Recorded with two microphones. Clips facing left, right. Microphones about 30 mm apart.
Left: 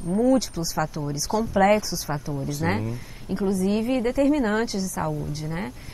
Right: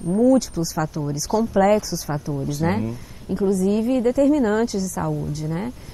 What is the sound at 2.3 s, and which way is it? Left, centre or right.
Speech, centre.